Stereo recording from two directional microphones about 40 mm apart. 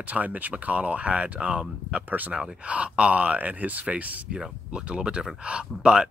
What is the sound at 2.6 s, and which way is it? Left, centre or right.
Speech, right.